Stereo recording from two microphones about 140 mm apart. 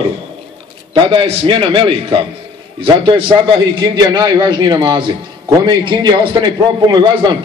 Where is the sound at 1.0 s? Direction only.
40° right (ahead or behind).